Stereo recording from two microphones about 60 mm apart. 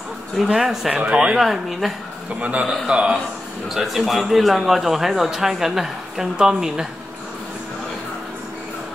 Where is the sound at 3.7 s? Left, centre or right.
Centre.